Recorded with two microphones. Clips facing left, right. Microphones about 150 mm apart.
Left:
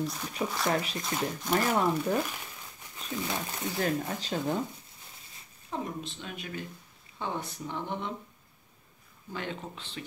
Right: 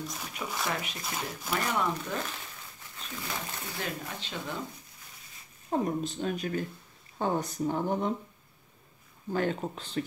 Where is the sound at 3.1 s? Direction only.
20° left (ahead or behind).